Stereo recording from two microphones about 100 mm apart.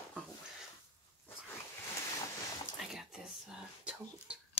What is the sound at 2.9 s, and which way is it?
Whispering, 5° right (ahead or behind).